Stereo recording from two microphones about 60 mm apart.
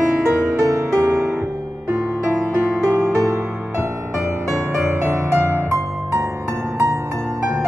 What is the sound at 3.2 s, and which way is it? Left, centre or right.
Music, right.